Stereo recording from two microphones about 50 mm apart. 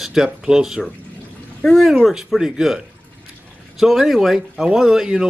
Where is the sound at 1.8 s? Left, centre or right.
Centre.